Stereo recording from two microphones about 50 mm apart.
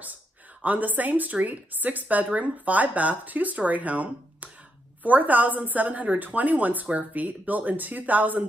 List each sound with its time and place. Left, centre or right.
0.6 s a woman's voice: right